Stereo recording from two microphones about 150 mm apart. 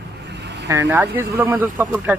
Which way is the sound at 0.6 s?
20° right (ahead or behind).